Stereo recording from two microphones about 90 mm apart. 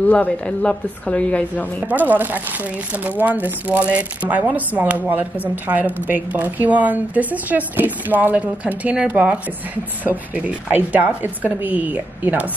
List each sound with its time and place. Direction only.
0.0 s speech: 15° left (ahead or behind)
1.9 s speech: 20° right (ahead or behind)